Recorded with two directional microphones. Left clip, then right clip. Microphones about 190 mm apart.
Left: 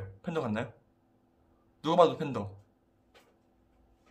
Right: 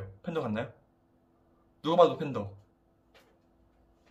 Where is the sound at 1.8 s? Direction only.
25° left (ahead or behind).